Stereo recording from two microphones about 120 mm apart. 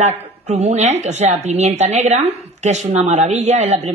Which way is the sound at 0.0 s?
65° right (ahead or behind).